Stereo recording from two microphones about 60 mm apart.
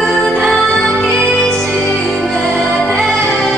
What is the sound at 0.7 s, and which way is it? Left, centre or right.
Music, centre.